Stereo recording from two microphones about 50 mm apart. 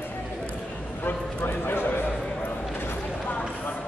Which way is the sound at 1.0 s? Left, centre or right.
Left.